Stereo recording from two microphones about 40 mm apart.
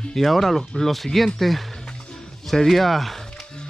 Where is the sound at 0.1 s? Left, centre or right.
Centre.